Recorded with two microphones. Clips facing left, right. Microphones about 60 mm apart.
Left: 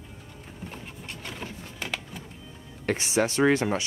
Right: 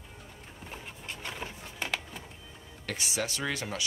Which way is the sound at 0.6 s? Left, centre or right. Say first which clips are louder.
Left 2 dB; centre.